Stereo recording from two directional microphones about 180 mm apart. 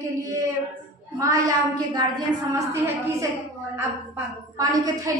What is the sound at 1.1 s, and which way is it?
Speech, 20° right (ahead or behind).